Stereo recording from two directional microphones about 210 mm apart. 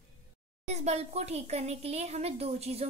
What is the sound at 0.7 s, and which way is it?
A child's voice, 30° right (ahead or behind).